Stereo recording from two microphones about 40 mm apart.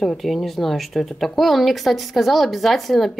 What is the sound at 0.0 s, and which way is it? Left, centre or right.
A woman's voice, centre.